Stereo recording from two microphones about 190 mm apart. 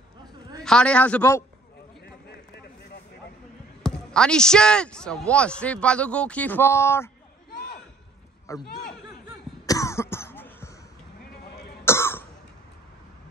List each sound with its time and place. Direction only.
0.7 s a man's voice: 5° left (ahead or behind)
3.8 s a man's voice: 5° left (ahead or behind)
7.5 s a sound: 55° left (ahead or behind)
8.5 s a man's voice: 15° left (ahead or behind)
9.7 s cough: 15° left (ahead or behind)
11.8 s throat clearing: 15° left (ahead or behind)